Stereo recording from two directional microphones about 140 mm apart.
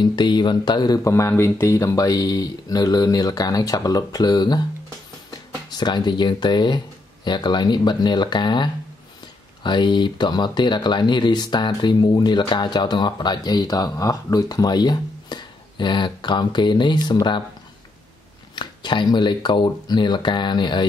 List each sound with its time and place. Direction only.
0.0 s speech: 30° left (ahead or behind)
5.7 s speech: 30° left (ahead or behind)
18.5 s speech: 35° left (ahead or behind)